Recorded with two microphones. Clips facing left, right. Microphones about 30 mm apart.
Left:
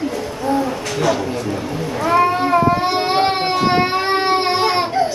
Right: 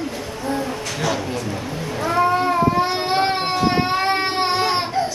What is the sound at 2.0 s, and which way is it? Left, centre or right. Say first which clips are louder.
Baby cry: left 3 dB; centre.